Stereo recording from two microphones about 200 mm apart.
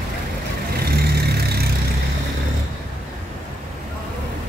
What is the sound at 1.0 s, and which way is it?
Vehicle, 50° right (ahead or behind).